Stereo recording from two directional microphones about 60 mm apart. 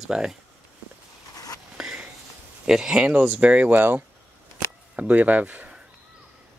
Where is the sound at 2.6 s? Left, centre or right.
Centre.